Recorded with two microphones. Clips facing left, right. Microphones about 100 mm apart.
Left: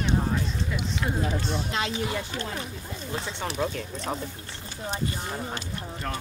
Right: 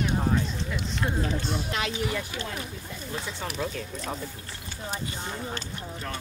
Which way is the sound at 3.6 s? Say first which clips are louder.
Left 4 dB; 40° left (ahead or behind).